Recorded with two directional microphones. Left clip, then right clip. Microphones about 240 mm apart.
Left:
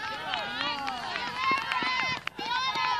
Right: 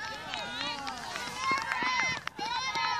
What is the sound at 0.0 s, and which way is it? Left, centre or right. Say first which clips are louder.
Run: left 5 dB; centre.